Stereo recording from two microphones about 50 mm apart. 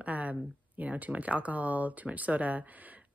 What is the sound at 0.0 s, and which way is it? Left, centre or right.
Speech, right.